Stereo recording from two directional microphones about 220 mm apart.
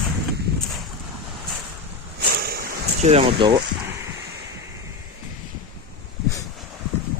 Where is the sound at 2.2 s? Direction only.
45° right (ahead or behind).